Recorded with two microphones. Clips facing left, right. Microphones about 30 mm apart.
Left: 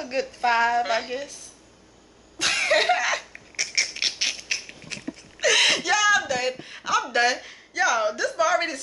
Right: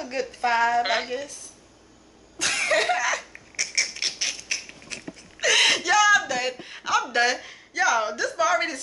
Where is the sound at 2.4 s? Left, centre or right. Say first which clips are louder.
Left 1 dB; centre.